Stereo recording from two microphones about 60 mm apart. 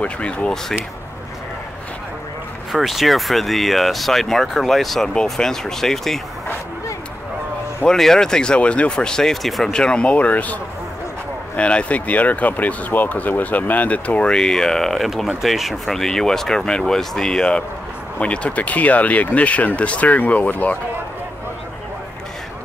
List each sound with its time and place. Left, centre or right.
0.0 s speech: centre
2.7 s speech: centre
7.8 s speech: centre
9.7 s speech: centre
14.3 s speech: centre; by 20.7 s left